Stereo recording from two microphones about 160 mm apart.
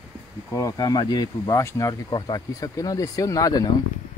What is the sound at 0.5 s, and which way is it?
Speech, 20° left (ahead or behind).